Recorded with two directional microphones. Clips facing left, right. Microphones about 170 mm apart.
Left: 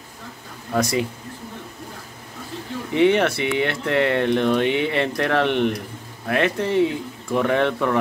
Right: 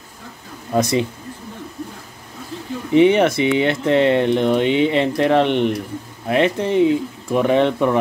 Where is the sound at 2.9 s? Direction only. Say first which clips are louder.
Right 4 dB; 20° right (ahead or behind).